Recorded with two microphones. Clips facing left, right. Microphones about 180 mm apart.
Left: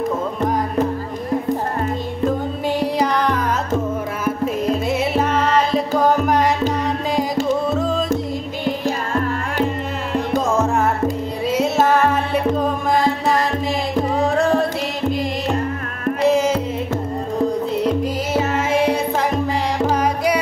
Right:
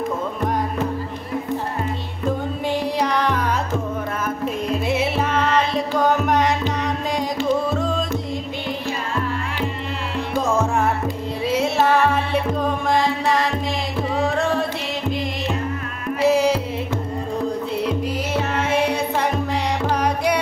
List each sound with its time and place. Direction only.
2.8 s music: centre (ahead or behind)
4.8 s music: centre (ahead or behind)
7.7 s music: centre (ahead or behind)
8.8 s music: 45° left (ahead or behind)
11.4 s music: centre (ahead or behind)
14.2 s carnatic music: centre (ahead or behind)
16.3 s music: centre (ahead or behind)
17.7 s music: centre (ahead or behind)